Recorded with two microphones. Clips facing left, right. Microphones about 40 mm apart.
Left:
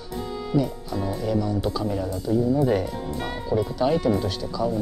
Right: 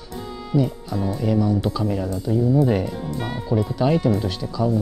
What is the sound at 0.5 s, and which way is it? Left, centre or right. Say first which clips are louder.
Speech: right 3 dB; centre.